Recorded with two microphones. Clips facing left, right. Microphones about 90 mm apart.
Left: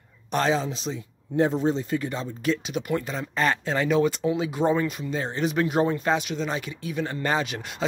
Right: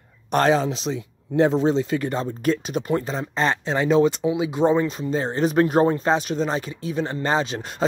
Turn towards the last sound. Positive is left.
turn(degrees=-35)  # may be behind; listen again after turning